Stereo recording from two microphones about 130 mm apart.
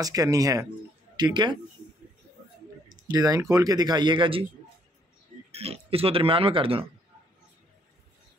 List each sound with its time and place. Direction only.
0.0 s speech: 25° right (ahead or behind)
2.9 s speech: 30° right (ahead or behind)
5.5 s speech: 50° right (ahead or behind)